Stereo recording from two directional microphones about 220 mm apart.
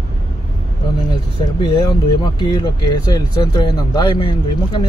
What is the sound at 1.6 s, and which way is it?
Speech, 20° left (ahead or behind).